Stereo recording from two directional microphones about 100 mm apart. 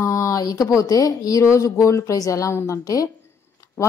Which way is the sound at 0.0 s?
30° left (ahead or behind).